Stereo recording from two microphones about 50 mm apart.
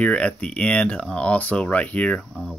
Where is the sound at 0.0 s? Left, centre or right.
Left.